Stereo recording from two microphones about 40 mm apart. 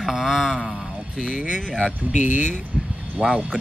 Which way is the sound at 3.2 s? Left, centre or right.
Centre.